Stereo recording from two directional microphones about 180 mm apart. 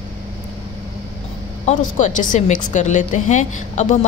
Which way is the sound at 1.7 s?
45° left (ahead or behind).